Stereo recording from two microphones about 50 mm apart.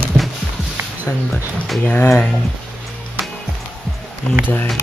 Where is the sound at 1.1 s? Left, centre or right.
Left.